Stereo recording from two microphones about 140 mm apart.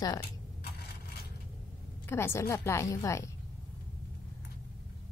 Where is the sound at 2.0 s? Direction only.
20° left (ahead or behind).